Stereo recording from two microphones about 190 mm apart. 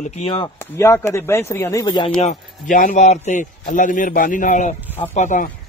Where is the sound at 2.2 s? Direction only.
45° left (ahead or behind).